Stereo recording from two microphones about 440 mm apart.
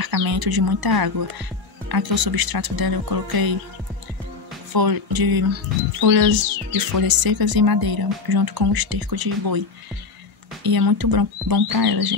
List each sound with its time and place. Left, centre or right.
0.0 s speech: right
4.7 s speech: right
10.6 s speech: right